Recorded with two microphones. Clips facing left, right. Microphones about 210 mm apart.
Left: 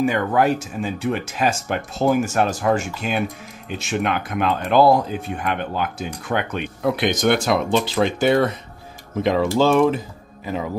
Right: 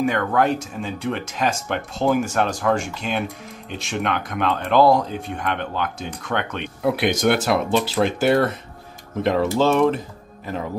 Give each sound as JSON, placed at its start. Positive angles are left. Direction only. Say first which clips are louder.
{"t": 0.0, "sound": "speech", "louder": "left 1 dB", "side_deg": 10}
{"t": 6.8, "sound": "speech", "louder": "even", "side_deg": -5}